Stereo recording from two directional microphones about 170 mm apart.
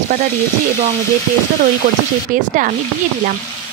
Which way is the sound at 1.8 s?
50° right (ahead or behind).